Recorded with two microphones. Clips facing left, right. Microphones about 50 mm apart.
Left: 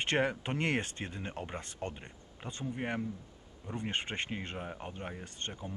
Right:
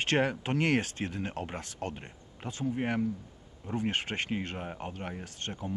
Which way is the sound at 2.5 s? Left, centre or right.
Centre.